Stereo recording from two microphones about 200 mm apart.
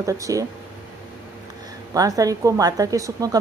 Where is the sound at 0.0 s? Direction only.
15° right (ahead or behind).